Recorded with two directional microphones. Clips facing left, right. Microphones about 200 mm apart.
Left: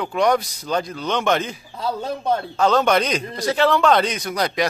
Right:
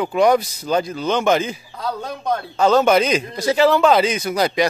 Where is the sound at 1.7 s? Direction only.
25° left (ahead or behind).